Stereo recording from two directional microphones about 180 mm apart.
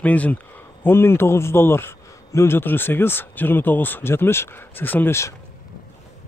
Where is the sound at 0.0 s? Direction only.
10° left (ahead or behind).